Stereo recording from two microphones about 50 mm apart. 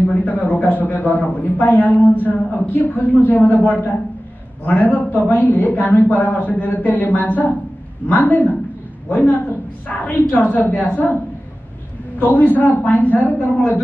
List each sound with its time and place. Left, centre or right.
0.1 s a man's voice: left
12.4 s a man's voice: left